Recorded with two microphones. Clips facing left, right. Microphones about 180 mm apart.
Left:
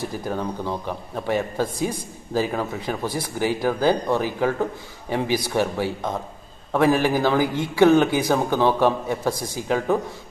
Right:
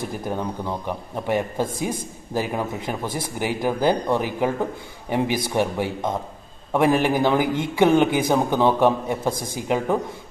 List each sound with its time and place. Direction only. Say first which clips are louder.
0.3 s a man's voice: left 1 dB; 15° right (ahead or behind)